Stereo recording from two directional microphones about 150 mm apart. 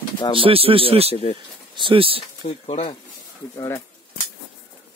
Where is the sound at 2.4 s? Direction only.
45° left (ahead or behind).